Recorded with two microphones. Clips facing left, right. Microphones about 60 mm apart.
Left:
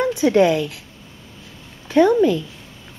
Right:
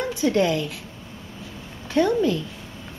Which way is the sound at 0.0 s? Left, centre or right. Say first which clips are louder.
Left 6 dB; left.